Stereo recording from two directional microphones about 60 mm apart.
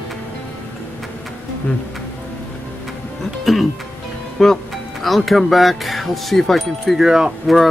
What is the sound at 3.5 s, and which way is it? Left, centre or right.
Speech, centre.